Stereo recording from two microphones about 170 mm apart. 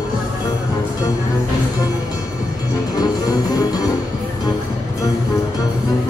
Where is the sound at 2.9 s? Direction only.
20° left (ahead or behind).